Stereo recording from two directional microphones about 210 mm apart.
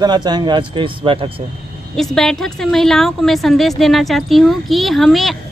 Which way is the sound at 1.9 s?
Centre (ahead or behind).